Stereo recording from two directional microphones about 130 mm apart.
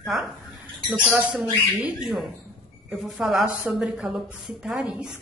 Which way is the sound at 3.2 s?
5° right (ahead or behind).